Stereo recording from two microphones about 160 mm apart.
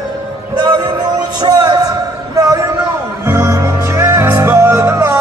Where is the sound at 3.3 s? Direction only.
20° right (ahead or behind).